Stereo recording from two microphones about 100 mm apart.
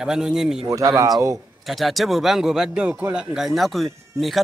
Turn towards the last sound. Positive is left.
turn(degrees=0)  # may be behind; listen again after turning